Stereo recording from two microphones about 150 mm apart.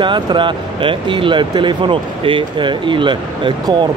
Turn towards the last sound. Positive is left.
turn(degrees=-30)  # may be behind; listen again after turning